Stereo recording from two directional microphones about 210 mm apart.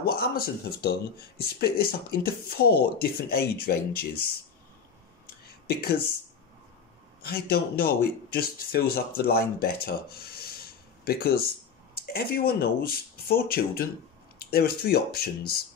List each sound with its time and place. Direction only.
0.0 s speech: 45° left (ahead or behind)
5.7 s speech: 45° left (ahead or behind)
7.2 s speech: 45° left (ahead or behind)
11.1 s speech: 45° left (ahead or behind)